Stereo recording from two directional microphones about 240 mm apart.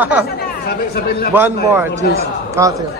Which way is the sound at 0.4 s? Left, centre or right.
Left.